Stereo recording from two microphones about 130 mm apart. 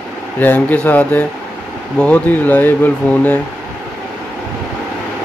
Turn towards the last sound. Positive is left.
turn(degrees=15)  # may be behind; listen again after turning